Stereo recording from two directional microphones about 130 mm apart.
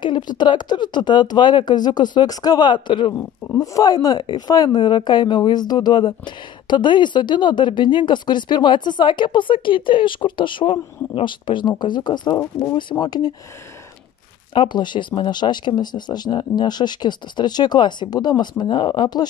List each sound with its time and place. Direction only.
0.0 s speech: 35° left (ahead or behind)
14.5 s speech: 35° left (ahead or behind)